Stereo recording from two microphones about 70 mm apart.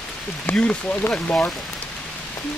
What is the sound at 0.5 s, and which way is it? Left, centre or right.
Speech, centre.